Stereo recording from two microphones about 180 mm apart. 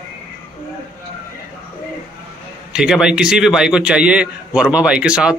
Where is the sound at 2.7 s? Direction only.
5° right (ahead or behind).